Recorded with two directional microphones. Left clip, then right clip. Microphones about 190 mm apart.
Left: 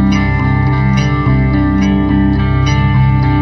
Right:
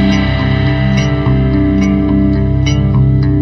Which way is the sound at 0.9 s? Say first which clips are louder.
Even; centre (ahead or behind).